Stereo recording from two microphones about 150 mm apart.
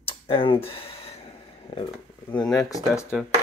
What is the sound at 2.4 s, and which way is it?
Speech, centre (ahead or behind).